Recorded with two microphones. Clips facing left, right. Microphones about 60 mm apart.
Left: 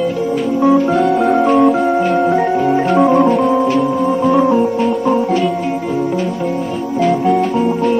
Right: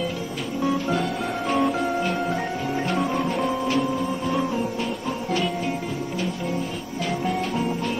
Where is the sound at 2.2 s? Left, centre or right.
Left.